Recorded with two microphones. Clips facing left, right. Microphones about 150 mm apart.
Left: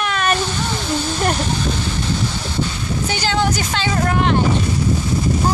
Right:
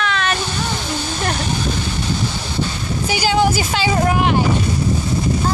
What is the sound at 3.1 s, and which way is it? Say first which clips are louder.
Speech: right 4 dB; 10° right (ahead or behind).